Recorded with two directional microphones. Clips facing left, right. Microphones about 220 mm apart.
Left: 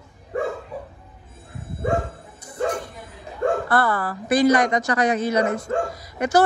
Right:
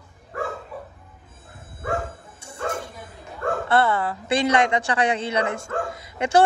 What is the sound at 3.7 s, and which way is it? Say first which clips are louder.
A man's voice: right 1 dB; 25° right (ahead or behind).